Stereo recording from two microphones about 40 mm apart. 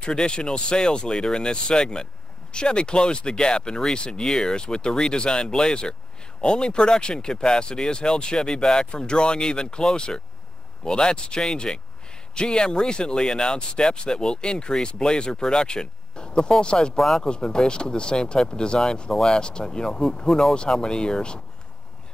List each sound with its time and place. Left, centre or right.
0.0 s speech: left
16.9 s speech: centre
17.2 s speech: centre